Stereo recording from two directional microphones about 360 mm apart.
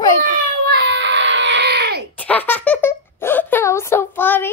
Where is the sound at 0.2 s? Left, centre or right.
Right.